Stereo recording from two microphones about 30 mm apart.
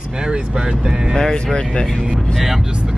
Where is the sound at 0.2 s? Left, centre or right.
Right.